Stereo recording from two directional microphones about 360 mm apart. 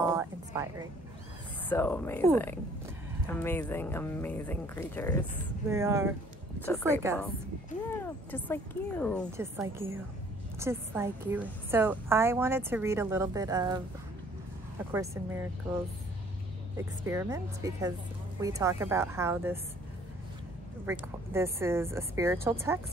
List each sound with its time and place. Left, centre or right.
0.1 s speech: centre
1.7 s speech: centre
5.3 s a woman's voice: centre
7.9 s speech: centre
10.6 s a woman's voice: centre
14.9 s a woman's voice: centre
17.0 s a woman's voice: centre
20.8 s a woman's voice: centre